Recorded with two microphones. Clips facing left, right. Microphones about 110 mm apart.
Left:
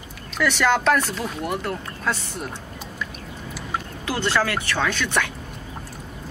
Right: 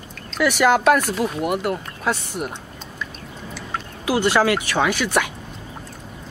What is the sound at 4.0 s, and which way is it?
Speech, 10° right (ahead or behind).